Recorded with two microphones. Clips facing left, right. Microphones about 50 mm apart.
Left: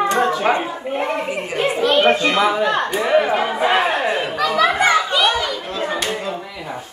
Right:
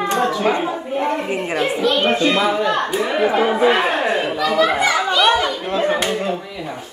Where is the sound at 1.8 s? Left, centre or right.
Left.